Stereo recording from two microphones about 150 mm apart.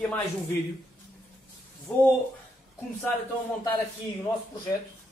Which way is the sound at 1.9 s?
5° left (ahead or behind).